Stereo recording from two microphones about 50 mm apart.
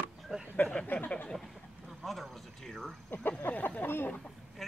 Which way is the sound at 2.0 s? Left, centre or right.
Centre.